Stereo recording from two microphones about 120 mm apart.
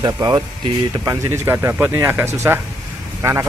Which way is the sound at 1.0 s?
25° right (ahead or behind).